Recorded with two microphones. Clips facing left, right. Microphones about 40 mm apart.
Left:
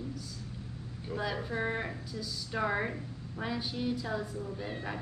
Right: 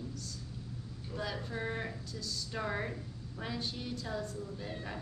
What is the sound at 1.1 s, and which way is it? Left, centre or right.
Speech, centre.